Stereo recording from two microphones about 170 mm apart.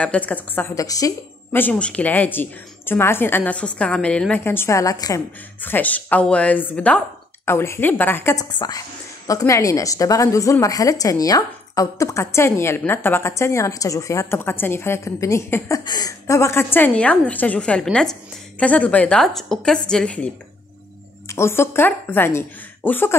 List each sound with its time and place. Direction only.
0.0 s a woman's voice: 10° left (ahead or behind)
5.6 s a woman's voice: 10° left (ahead or behind)
21.3 s speech: 15° left (ahead or behind)